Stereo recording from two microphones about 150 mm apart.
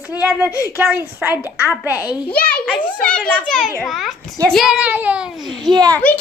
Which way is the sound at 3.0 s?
5° left (ahead or behind).